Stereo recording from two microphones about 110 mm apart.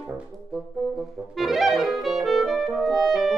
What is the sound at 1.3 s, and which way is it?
Clarinet, centre (ahead or behind).